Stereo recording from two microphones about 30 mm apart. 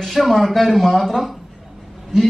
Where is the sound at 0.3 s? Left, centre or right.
Centre.